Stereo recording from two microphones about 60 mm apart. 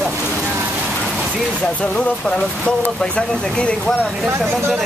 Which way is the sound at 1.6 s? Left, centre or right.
Left.